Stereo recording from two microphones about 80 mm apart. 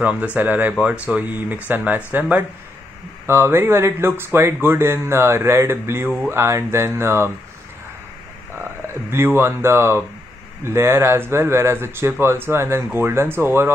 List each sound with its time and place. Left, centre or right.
0.0 s speech: centre; by 7.2 s right
9.1 s speech: right